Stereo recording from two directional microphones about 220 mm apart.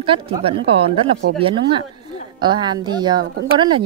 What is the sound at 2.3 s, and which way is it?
Speech, 20° right (ahead or behind).